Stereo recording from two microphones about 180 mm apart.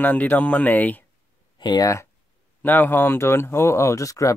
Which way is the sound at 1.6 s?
20° left (ahead or behind).